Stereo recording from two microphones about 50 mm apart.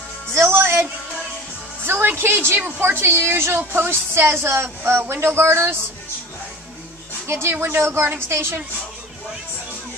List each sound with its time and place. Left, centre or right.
0.3 s music: right
1.9 s a woman's voice: right
7.2 s speech: right
7.6 s a woman's voice: right